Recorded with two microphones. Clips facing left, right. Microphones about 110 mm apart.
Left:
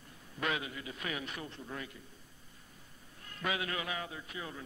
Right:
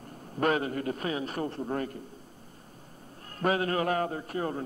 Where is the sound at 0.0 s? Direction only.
45° right (ahead or behind).